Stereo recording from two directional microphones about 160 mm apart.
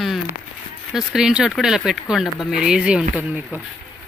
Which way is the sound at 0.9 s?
5° right (ahead or behind).